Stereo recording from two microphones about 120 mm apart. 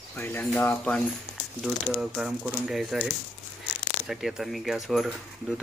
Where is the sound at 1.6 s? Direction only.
5° right (ahead or behind).